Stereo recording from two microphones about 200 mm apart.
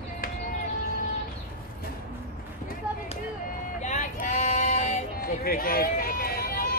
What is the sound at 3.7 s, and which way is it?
Vehicle, 35° left (ahead or behind).